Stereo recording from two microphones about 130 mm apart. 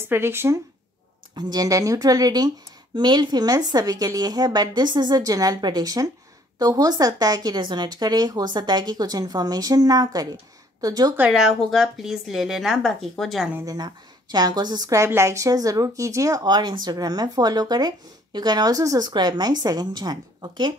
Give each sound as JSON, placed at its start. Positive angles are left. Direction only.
{"t": 0.1, "sound": "a woman's voice", "side_deg": -20}
{"t": 1.3, "sound": "a woman's voice", "side_deg": -30}
{"t": 11.1, "sound": "a woman's voice", "side_deg": -5}
{"t": 13.6, "sound": "a woman's voice", "side_deg": -30}